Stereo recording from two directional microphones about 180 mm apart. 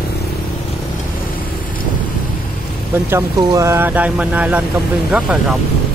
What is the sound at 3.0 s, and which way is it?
Speech, 15° right (ahead or behind).